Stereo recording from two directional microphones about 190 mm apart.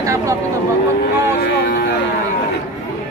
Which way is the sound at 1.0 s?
60° left (ahead or behind).